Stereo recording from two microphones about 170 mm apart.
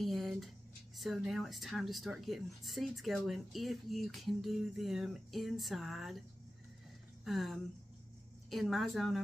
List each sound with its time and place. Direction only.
0.0 s a sound: centre (ahead or behind)
0.9 s speech: centre (ahead or behind)
7.2 s speech: centre (ahead or behind)